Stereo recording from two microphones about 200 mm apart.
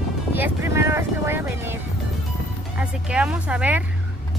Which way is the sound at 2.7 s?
5° right (ahead or behind).